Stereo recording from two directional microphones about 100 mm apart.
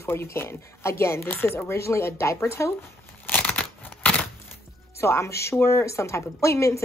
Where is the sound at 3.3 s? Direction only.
15° left (ahead or behind).